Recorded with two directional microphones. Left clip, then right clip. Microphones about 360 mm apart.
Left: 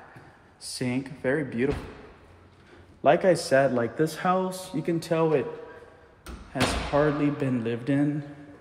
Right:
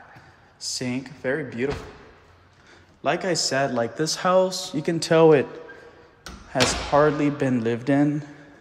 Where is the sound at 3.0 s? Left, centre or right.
Centre.